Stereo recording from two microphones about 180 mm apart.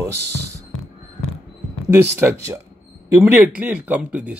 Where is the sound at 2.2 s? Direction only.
15° right (ahead or behind).